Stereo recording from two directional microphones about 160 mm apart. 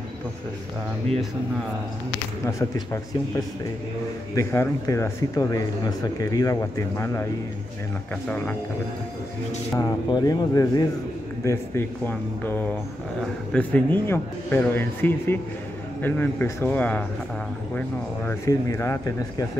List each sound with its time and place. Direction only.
2.4 s speech: 20° left (ahead or behind)
9.8 s speech: 25° left (ahead or behind)